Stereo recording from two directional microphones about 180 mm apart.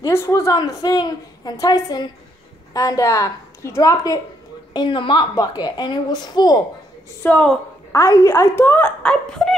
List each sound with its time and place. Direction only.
0.0 s a woman's voice: 15° left (ahead or behind)
7.2 s a woman's voice: 5° left (ahead or behind)
7.9 s speech: 15° left (ahead or behind)